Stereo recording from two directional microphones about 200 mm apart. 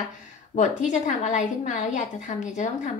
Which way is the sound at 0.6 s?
40° left (ahead or behind).